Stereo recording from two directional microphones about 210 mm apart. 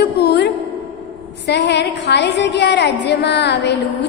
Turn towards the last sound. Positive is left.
turn(degrees=55)  # may be behind; listen again after turning